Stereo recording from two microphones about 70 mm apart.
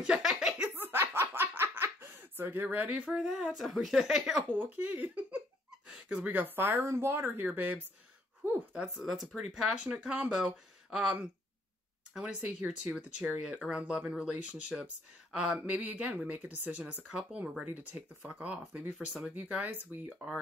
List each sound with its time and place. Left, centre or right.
0.0 s a sound: centre
0.7 s a sound: right
3.1 s a woman's voice: centre
4.5 s speech: right
5.9 s a sound: centre
6.2 s speech: right
8.7 s speech: centre
10.2 s speech: centre
20.2 s speech: centre